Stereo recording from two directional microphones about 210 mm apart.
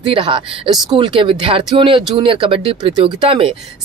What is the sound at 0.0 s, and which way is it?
Speech, 25° right (ahead or behind).